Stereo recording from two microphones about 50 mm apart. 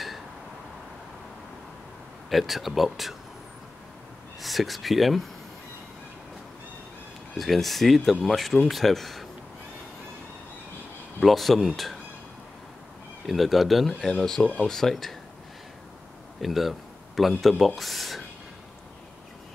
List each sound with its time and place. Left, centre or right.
2.2 s speech: centre
4.4 s speech: centre
7.3 s speech: centre
11.1 s speech: centre
13.3 s speech: centre
14.4 s speech: left
14.7 s speech: centre
16.3 s speech: centre